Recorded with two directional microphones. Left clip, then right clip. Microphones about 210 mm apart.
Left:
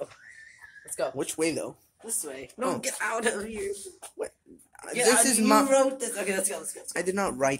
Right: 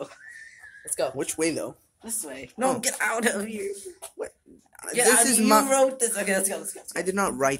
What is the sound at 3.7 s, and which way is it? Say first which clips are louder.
Speech: right 1 dB; centre (ahead or behind).